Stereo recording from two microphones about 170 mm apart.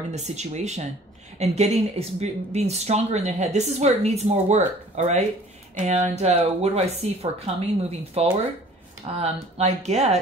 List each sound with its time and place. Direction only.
0.1 s speech: 40° right (ahead or behind)